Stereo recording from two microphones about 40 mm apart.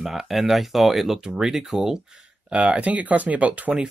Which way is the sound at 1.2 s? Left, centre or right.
Centre.